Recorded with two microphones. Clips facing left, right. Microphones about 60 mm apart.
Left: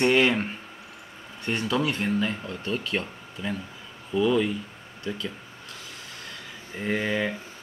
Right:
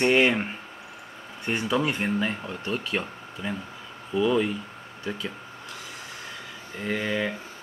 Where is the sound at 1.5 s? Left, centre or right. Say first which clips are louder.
Right 1 dB; centre.